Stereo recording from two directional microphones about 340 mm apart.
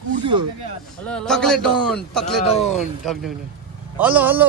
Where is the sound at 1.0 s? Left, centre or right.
Centre.